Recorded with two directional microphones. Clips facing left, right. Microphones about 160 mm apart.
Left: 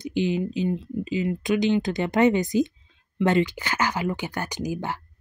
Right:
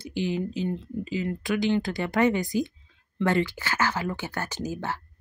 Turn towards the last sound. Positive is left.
turn(degrees=15)  # may be behind; listen again after turning